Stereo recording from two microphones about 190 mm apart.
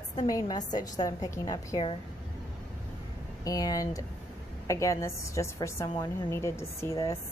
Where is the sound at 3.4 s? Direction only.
20° left (ahead or behind).